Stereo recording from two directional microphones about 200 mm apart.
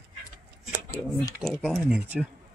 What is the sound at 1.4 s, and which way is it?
Speech, 5° right (ahead or behind).